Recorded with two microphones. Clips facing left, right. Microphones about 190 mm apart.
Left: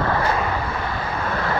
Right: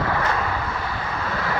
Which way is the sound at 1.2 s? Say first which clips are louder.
Left 3 dB; 55° left (ahead or behind).